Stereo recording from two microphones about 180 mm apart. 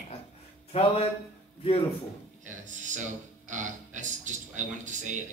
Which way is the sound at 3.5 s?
45° right (ahead or behind).